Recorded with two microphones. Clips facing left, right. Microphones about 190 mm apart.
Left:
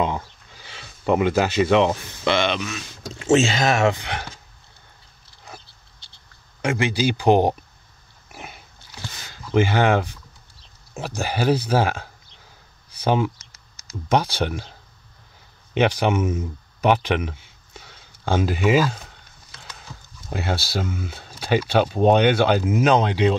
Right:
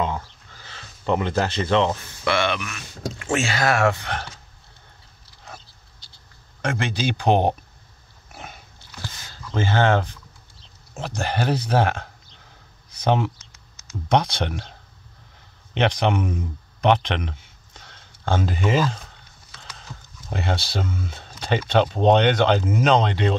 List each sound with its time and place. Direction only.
0.0 s a sound: 15° left (ahead or behind)
2.2 s speech: 20° left (ahead or behind)
6.6 s speech: 10° left (ahead or behind)
8.3 s pig: 5° left (ahead or behind)
9.3 s speech: 15° left (ahead or behind)
15.7 s speech: 5° left (ahead or behind)
20.2 s speech: 5° left (ahead or behind)